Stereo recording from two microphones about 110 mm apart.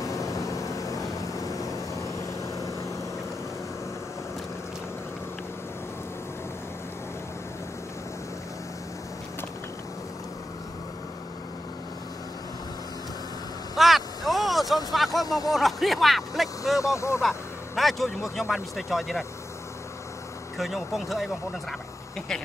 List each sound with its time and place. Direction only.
0.0 s vehicle: 30° left (ahead or behind)
13.7 s vehicle: centre (ahead or behind)
15.2 s speech: 35° left (ahead or behind)
15.5 s speech: centre (ahead or behind)
16.7 s speech: 25° left (ahead or behind)
17.2 s speech: centre (ahead or behind)
20.5 s speech: centre (ahead or behind)